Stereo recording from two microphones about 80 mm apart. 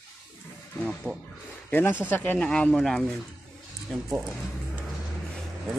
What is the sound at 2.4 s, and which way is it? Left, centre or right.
Speech, centre.